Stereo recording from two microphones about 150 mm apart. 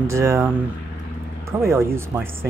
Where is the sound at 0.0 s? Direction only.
20° right (ahead or behind).